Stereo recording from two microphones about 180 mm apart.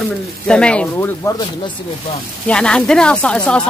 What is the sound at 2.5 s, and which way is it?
Speech, 5° left (ahead or behind).